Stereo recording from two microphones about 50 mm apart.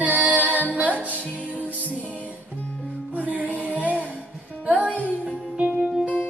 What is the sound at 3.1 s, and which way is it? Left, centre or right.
Music, right.